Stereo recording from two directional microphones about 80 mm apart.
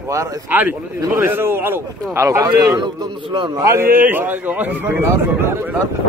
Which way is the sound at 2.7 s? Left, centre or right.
Right.